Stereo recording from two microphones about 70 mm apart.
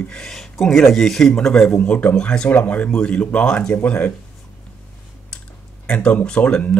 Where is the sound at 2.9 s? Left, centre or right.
Centre.